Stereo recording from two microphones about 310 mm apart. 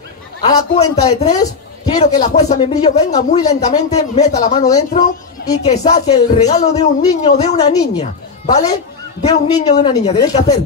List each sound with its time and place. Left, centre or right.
0.4 s a woman's voice: centre